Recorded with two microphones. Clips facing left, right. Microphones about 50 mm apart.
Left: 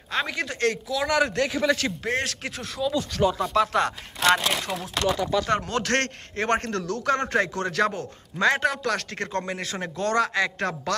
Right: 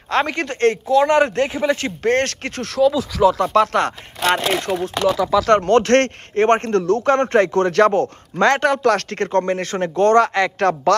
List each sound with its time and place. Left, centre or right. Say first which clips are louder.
0.1 s a man's voice: right 8 dB; right
2.0 s speech: right 12 dB; right
3.5 s speech: right 6 dB; right
4.2 s speech: right 3 dB; centre
5.6 s a man's voice: right 11 dB; right